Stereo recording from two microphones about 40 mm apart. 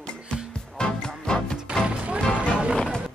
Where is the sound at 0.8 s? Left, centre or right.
Left.